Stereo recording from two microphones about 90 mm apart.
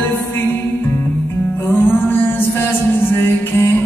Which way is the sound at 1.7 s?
25° left (ahead or behind).